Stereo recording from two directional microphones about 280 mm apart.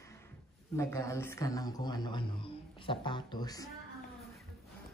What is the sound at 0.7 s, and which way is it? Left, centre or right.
Speech, centre.